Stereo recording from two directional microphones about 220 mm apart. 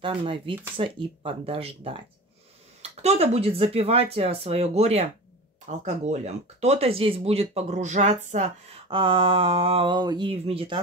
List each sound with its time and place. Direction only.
0.0 s speech: 25° right (ahead or behind)